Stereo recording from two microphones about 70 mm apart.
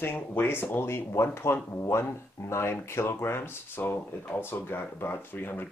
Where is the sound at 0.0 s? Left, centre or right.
Left.